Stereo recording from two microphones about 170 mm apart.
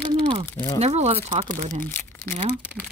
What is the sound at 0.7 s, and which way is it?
Speech, 40° right (ahead or behind).